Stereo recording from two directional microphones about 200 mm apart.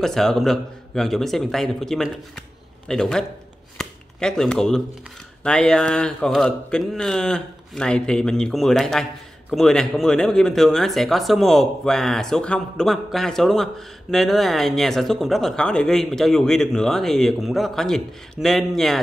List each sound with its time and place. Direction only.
0.0 s speech: centre (ahead or behind)
3.7 s chopping: 5° left (ahead or behind)
5.4 s speech: 5° left (ahead or behind)